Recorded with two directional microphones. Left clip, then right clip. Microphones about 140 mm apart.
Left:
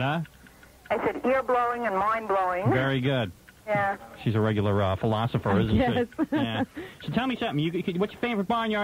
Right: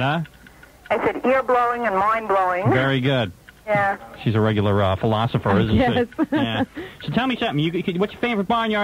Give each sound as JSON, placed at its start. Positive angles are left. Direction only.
{"t": 0.8, "sound": "speech", "side_deg": 30}